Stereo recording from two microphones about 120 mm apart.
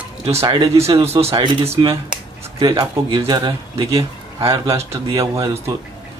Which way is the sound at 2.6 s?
35° right (ahead or behind).